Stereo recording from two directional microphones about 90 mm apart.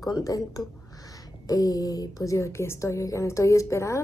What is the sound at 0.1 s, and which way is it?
A woman's voice, 40° left (ahead or behind).